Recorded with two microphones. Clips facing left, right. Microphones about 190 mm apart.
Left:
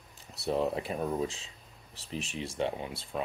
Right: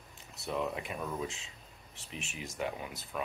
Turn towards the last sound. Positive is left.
turn(degrees=30)  # may be behind; listen again after turning